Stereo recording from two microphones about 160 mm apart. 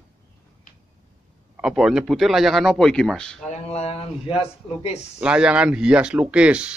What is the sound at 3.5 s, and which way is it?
Speech, 40° left (ahead or behind).